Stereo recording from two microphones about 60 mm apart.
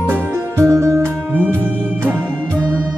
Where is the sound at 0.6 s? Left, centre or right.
Right.